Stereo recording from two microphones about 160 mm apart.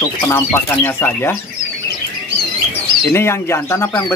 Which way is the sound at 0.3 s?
15° left (ahead or behind).